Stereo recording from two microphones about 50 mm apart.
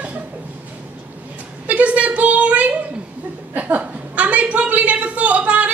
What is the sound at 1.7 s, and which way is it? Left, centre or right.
A woman's voice, right.